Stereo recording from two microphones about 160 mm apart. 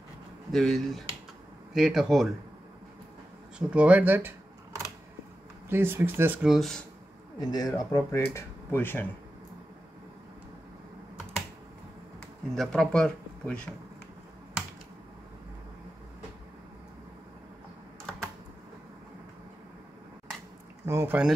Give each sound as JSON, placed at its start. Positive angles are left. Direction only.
{"t": 0.5, "sound": "speech", "side_deg": 0}
{"t": 3.5, "sound": "speech", "side_deg": -10}
{"t": 5.7, "sound": "speech", "side_deg": -15}
{"t": 7.3, "sound": "speech", "side_deg": 25}
{"t": 12.5, "sound": "speech", "side_deg": 5}
{"t": 20.8, "sound": "speech", "side_deg": -15}